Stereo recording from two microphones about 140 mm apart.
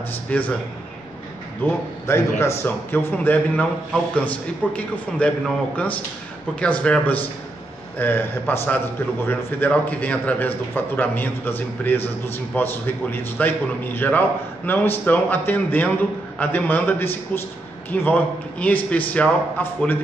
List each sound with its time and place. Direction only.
0.3 s a man's voice: 10° left (ahead or behind)
1.6 s a man's voice: 20° left (ahead or behind)
6.6 s a man's voice: 5° left (ahead or behind)